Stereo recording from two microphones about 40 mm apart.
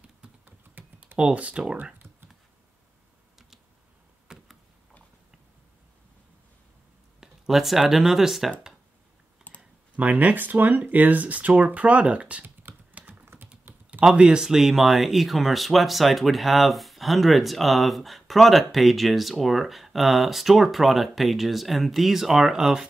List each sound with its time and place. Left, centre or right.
0.5 s typing: right
1.1 s speech: right
4.3 s a sound: centre
7.2 s a sound: centre
7.9 s speech: centre
9.9 s speech: right
12.9 s typing: right
13.2 s typing: right
14.0 s speech: right
14.4 s speech: centre